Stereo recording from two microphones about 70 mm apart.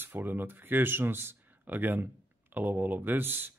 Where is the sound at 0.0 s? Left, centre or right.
Right.